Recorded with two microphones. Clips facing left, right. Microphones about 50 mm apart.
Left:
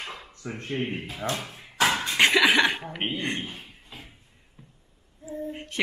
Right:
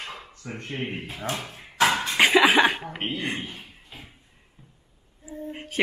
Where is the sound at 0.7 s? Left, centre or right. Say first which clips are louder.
Left 2 dB; centre.